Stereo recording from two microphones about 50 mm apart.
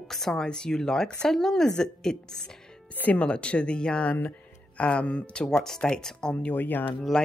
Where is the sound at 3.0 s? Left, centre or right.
Left.